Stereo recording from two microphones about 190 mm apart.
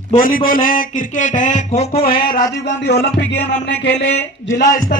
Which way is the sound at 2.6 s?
60° left (ahead or behind).